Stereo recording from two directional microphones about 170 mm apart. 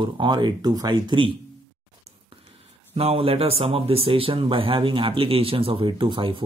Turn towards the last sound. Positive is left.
turn(degrees=-30)  # may be behind; listen again after turning